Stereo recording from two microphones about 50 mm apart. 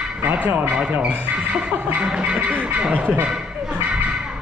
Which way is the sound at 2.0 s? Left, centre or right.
Centre.